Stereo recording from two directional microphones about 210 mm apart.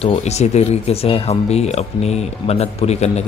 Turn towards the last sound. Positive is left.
turn(degrees=30)  # may be behind; listen again after turning